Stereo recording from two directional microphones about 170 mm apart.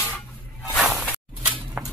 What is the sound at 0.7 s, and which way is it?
Walk, centre (ahead or behind).